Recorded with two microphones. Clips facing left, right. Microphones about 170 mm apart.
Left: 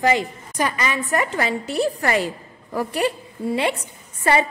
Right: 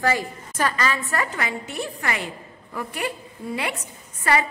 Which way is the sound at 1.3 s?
30° left (ahead or behind).